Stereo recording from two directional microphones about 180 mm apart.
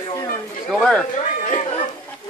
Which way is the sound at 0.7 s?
Centre (ahead or behind).